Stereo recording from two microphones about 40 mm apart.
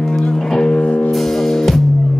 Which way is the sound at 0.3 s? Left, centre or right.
Centre.